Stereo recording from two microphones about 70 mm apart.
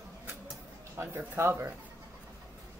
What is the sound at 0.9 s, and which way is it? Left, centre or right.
Speech, right.